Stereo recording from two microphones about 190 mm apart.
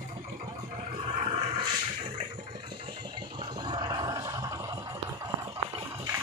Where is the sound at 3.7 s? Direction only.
20° right (ahead or behind).